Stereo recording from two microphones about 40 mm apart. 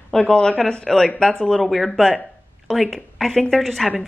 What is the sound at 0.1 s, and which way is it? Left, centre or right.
A woman's voice, centre.